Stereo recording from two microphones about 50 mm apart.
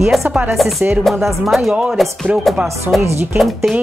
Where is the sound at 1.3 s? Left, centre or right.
Centre.